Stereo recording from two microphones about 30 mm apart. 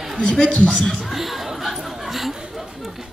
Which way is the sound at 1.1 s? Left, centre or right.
Centre.